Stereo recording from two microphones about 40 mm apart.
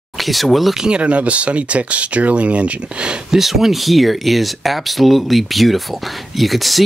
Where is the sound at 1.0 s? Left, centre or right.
Right.